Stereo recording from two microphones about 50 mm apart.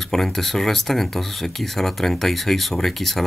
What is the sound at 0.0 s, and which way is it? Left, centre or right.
Speech, centre.